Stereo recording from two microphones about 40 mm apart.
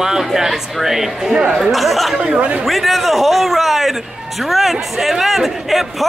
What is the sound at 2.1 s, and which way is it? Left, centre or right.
Speech, right.